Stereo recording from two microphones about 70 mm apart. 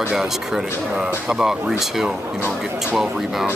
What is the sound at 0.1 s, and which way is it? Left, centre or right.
Speech, centre.